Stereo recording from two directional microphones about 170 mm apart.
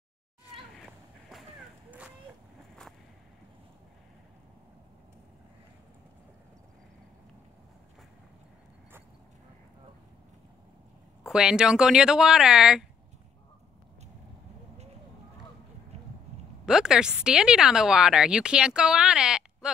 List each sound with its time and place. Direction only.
0.7 s a sound: centre (ahead or behind)
11.2 s speech: 5° right (ahead or behind)
16.6 s speech: 5° right (ahead or behind)